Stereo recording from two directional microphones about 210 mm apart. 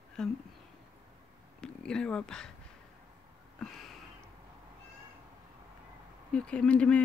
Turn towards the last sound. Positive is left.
turn(degrees=5)  # may be behind; listen again after turning